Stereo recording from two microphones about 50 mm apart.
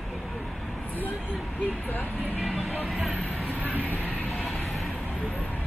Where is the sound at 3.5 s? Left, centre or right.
Right.